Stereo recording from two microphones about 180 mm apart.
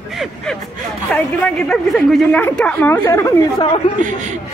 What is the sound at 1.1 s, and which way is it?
Speech, 5° left (ahead or behind).